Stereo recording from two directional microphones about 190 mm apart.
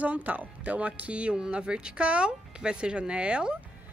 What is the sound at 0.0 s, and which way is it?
Speech, 10° right (ahead or behind).